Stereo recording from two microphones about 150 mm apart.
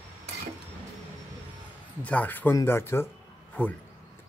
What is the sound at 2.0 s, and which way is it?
Speech, 10° left (ahead or behind).